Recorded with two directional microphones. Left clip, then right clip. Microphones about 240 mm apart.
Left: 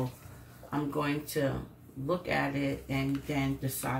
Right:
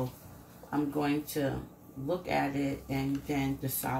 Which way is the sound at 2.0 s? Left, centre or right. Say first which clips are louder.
Even; centre.